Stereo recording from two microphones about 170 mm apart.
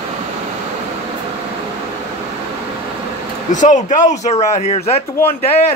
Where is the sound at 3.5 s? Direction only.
45° left (ahead or behind).